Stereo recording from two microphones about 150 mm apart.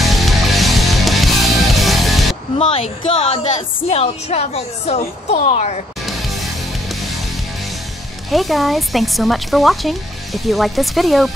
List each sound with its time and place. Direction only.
0.0 s music: centre (ahead or behind)
2.6 s speech: 40° left (ahead or behind)
6.0 s music: centre (ahead or behind)
8.3 s speech: centre (ahead or behind)